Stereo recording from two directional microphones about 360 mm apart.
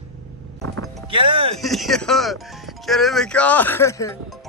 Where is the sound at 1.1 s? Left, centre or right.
Centre.